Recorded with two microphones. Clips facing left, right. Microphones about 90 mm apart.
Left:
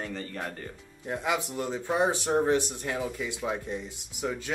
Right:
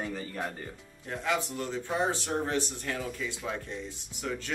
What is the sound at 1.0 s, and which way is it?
Speech, 15° left (ahead or behind).